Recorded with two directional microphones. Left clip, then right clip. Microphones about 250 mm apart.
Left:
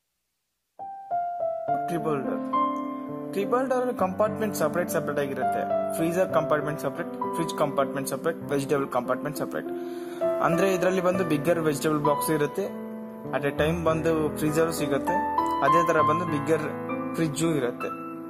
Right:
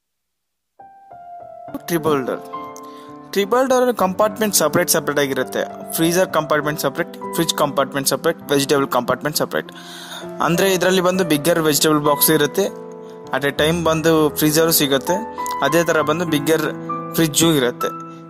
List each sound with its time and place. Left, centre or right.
1.9 s speech: right
3.4 s speech: right